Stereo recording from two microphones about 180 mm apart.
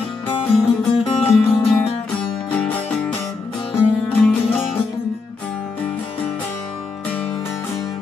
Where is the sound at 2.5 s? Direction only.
5° left (ahead or behind).